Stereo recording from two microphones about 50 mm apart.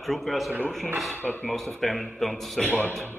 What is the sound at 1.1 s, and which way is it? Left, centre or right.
Speech, left.